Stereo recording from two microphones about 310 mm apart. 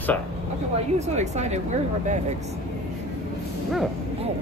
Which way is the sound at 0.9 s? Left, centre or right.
Right.